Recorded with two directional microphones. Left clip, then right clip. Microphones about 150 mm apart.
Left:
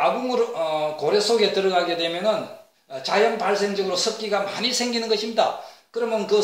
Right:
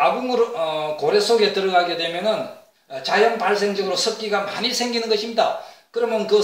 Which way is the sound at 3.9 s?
20° left (ahead or behind).